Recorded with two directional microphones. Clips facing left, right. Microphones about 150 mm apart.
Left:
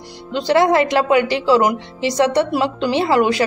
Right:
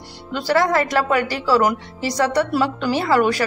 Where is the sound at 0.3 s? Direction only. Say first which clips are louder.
Left 4 dB; 20° left (ahead or behind).